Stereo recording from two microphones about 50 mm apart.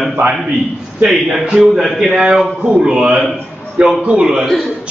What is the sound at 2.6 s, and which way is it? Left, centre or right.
A man's voice, right.